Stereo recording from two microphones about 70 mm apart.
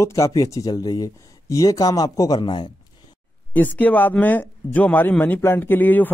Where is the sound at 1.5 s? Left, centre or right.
Left.